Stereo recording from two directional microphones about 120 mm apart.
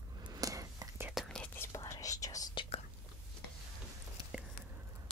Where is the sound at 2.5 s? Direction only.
45° left (ahead or behind).